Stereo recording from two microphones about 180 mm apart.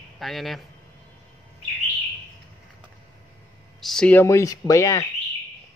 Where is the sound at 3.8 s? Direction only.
Centre (ahead or behind).